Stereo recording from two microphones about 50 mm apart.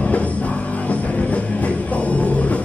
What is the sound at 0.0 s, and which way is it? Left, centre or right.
Music, left.